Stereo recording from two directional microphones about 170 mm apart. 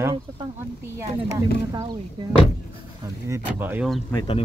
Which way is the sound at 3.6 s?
10° right (ahead or behind).